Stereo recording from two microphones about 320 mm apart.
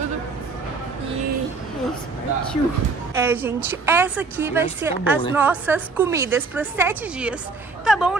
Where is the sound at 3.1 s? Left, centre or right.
Centre.